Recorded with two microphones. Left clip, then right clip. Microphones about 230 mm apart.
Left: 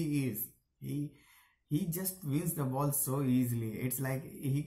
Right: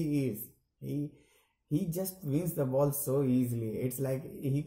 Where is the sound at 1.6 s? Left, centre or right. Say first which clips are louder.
Right 3 dB; centre.